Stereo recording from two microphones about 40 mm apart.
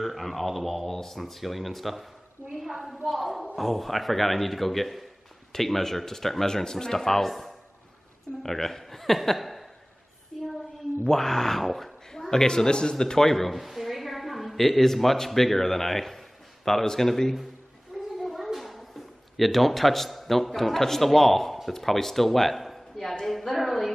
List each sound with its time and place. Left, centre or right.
0.0 s speech: centre
2.5 s a sound: centre
3.5 s a man's voice: centre
10.3 s child singing: centre
11.1 s a man's voice: centre
13.3 s a woman's voice: centre